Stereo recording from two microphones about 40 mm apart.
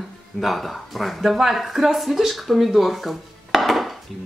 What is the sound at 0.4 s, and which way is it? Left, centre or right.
Speech, centre.